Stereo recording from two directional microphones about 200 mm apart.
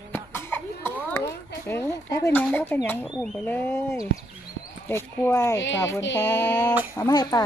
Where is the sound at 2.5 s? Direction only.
10° left (ahead or behind).